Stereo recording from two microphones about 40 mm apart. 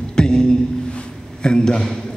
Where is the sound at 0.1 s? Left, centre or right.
Centre.